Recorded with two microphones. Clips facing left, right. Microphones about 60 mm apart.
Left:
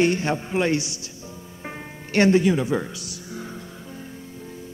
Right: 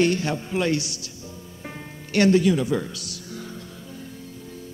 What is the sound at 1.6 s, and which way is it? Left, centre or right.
Music, left.